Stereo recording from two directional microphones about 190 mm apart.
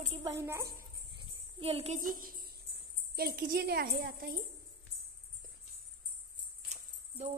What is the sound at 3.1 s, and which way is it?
A child's voice, 55° right (ahead or behind).